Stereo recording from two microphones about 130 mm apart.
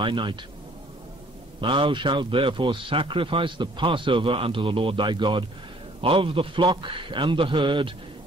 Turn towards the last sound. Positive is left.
turn(degrees=-40)  # may be behind; listen again after turning